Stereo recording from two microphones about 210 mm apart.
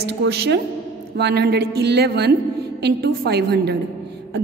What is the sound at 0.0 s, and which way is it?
A woman's voice, 55° right (ahead or behind).